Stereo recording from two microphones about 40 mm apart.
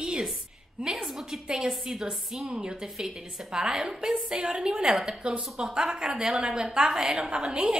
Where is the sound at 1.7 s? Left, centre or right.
Centre.